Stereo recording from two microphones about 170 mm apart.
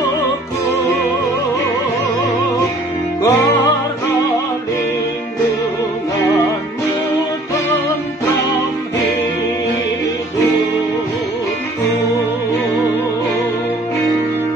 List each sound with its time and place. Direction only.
3.2 s music: 15° left (ahead or behind)